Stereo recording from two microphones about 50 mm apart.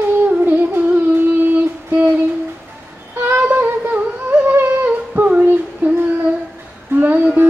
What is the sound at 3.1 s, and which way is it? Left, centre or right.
Yodeling, right.